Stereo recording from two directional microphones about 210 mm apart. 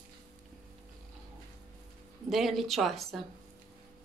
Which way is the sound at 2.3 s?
Centre (ahead or behind).